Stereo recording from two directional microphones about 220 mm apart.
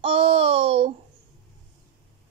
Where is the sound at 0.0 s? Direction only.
25° right (ahead or behind).